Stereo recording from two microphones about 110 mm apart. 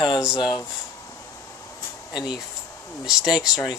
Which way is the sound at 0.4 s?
40° left (ahead or behind).